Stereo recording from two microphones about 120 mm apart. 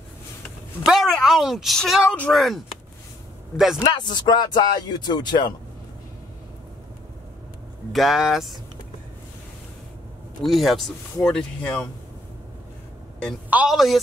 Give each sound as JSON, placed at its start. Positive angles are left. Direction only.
{"t": 0.8, "sound": "speech", "side_deg": 0}
{"t": 3.8, "sound": "speech", "side_deg": 40}
{"t": 7.9, "sound": "speech", "side_deg": 0}
{"t": 10.4, "sound": "speech", "side_deg": 0}
{"t": 13.5, "sound": "a woman's voice", "side_deg": -10}